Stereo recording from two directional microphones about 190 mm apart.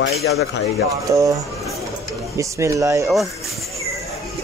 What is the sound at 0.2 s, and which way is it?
Speech, 60° left (ahead or behind).